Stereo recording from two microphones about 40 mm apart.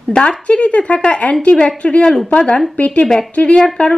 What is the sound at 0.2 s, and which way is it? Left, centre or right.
A woman's voice, left.